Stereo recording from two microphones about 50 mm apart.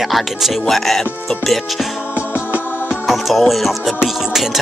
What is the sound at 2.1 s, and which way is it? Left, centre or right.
Music, right.